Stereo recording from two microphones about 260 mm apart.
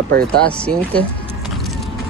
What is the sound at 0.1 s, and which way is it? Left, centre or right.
Speech, right.